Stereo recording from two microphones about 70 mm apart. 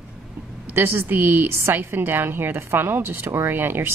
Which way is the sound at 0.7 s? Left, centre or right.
Right.